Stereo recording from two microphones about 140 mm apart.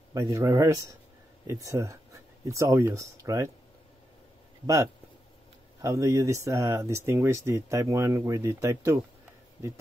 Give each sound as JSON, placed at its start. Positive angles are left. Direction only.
{"t": 0.1, "sound": "speech", "side_deg": -20}
{"t": 5.8, "sound": "speech", "side_deg": -25}